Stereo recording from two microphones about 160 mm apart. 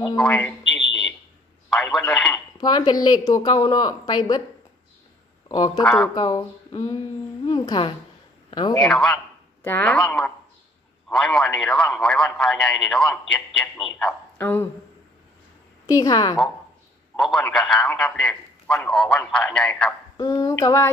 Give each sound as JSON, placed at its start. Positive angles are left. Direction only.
{"t": 0.2, "sound": "a man's voice", "side_deg": 10}
{"t": 1.7, "sound": "a man's voice", "side_deg": 5}
{"t": 2.3, "sound": "speech", "side_deg": 25}
{"t": 5.5, "sound": "a man's voice", "side_deg": 25}
{"t": 8.7, "sound": "a woman's voice", "side_deg": 5}
{"t": 15.9, "sound": "speech", "side_deg": 25}
{"t": 17.2, "sound": "a man's voice", "side_deg": 5}
{"t": 20.2, "sound": "speech", "side_deg": 20}